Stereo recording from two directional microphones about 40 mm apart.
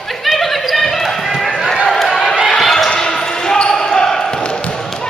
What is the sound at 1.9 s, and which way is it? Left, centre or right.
Run, centre.